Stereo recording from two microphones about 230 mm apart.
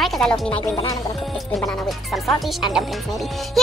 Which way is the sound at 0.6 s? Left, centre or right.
Centre.